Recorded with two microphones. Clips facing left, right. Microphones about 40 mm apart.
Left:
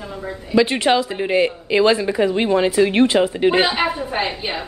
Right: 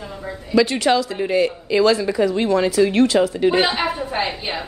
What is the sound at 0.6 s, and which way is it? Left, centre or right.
Speech, left.